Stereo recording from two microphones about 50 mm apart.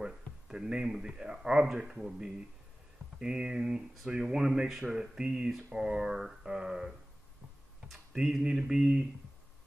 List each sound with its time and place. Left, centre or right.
0.0 s speech: centre
7.9 s speech: centre